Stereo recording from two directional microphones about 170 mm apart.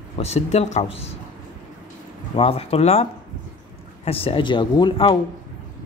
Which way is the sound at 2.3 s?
35° left (ahead or behind).